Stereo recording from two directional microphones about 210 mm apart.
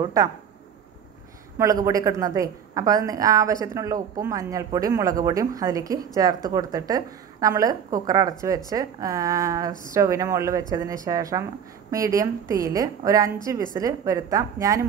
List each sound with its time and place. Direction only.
0.0 s a woman's voice: 15° right (ahead or behind)
1.6 s a woman's voice: 15° right (ahead or behind)